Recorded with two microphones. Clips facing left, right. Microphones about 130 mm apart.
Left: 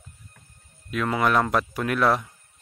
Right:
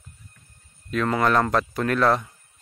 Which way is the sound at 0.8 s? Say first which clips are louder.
Right 2 dB; 5° left (ahead or behind).